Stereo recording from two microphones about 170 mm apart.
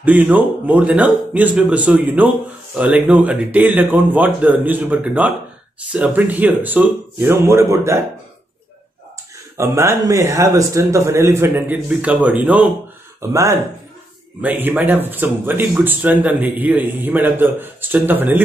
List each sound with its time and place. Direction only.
0.0 s speech: 10° right (ahead or behind)
9.6 s speech: 15° right (ahead or behind)